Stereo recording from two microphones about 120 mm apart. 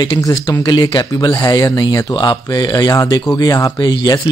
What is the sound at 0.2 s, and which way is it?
Speech, 40° left (ahead or behind).